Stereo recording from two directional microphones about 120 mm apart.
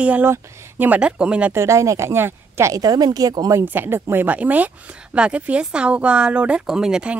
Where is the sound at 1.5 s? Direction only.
25° right (ahead or behind).